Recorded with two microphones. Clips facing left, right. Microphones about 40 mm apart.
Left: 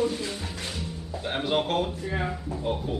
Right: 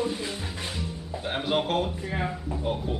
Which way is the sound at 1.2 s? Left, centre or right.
Centre.